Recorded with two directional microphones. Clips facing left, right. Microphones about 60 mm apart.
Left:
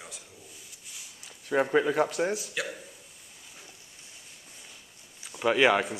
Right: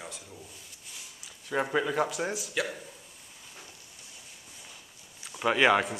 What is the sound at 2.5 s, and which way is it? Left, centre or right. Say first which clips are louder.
Speech: right 2 dB; centre.